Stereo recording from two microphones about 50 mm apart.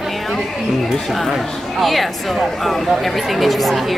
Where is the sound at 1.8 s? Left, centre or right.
Centre.